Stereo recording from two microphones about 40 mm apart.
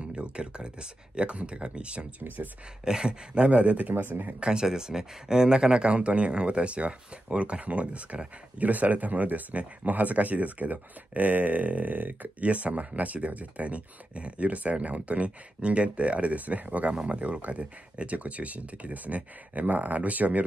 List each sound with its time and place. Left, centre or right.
0.1 s speech: right
2.2 s speech: right
2.8 s speech: centre
4.1 s speech: right
4.4 s speech: centre; by 12.4 s right
12.4 s speech: right